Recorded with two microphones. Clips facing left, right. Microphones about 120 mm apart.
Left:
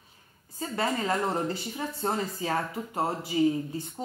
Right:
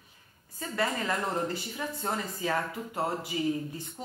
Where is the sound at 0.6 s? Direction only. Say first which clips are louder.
Left 2 dB; 25° left (ahead or behind).